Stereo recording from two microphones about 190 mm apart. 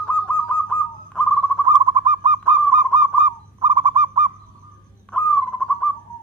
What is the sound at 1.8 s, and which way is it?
Owl, 20° right (ahead or behind).